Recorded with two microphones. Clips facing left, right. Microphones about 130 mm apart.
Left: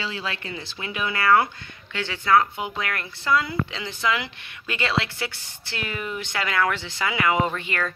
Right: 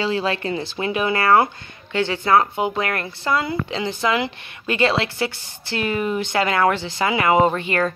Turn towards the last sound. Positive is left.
turn(degrees=-40)  # may be behind; listen again after turning